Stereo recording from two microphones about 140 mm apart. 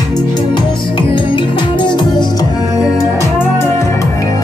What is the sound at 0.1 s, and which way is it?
Music, 30° left (ahead or behind).